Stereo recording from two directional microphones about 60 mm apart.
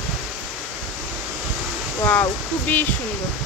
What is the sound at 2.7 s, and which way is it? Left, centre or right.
Speech, left.